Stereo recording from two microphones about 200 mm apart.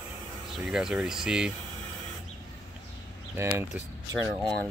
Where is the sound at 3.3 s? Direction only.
15° right (ahead or behind).